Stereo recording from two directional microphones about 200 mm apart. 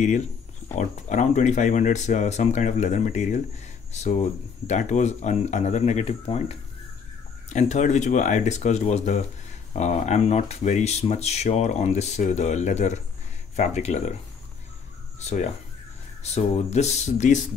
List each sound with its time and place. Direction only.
0.7 s speech: 40° left (ahead or behind)
15.1 s speech: 35° left (ahead or behind)